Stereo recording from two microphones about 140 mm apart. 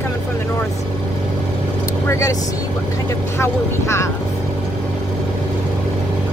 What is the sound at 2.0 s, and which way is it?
Speech, 20° left (ahead or behind).